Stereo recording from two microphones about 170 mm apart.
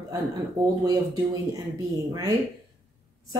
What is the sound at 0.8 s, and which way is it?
Speech, 20° right (ahead or behind).